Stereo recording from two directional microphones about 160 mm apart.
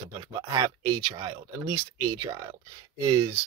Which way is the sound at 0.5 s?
20° right (ahead or behind).